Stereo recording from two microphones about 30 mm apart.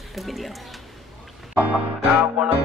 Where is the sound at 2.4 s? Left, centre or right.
Right.